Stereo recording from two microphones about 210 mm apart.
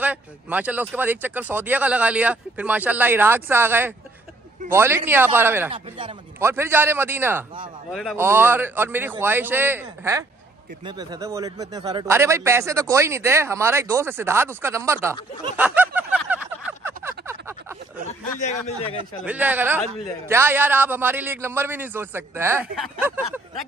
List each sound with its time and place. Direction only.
0.0 s a man's voice: 5° right (ahead or behind)
5.7 s speech: 25° right (ahead or behind)
6.4 s a man's voice: 10° right (ahead or behind)
15.5 s a sound: 5° right (ahead or behind)
18.4 s speech: 30° left (ahead or behind)
19.2 s a man's voice: 10° right (ahead or behind)